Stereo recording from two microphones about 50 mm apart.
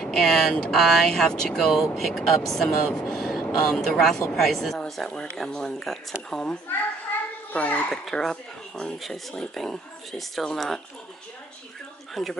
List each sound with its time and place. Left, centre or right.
0.0 s speech: centre
7.5 s a child's voice: left
8.0 s speech: centre
12.1 s speech: centre